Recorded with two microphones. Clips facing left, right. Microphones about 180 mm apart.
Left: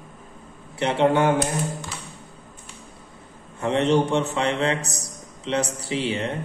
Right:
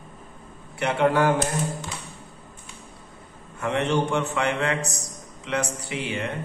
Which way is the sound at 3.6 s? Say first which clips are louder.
Left 4 dB; 30° left (ahead or behind).